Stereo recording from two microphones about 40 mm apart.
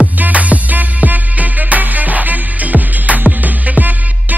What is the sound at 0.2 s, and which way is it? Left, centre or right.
Music, right.